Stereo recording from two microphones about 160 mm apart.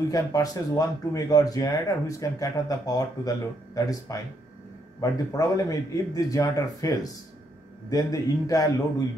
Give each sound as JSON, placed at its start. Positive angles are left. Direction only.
{"t": 0.1, "sound": "speech", "side_deg": 20}